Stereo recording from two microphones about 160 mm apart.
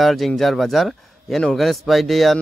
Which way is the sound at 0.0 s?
Centre (ahead or behind).